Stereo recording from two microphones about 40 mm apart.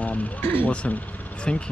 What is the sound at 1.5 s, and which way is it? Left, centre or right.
Speech, left.